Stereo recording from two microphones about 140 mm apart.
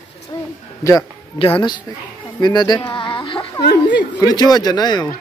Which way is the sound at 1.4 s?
40° left (ahead or behind).